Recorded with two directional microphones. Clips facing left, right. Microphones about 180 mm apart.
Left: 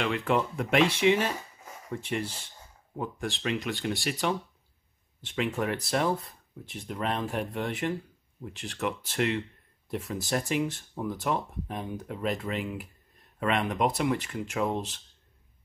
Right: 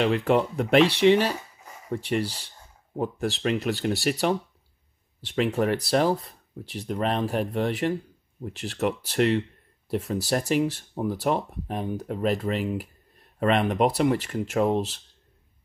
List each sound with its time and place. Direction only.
0.0 s speech: 40° right (ahead or behind)